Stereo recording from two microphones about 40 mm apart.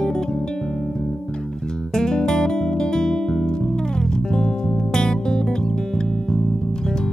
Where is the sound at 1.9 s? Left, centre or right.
Centre.